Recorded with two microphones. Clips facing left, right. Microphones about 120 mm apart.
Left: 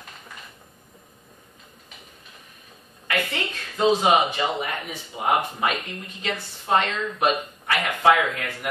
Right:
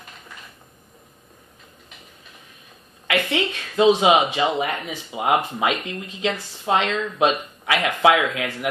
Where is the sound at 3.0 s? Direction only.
90° right.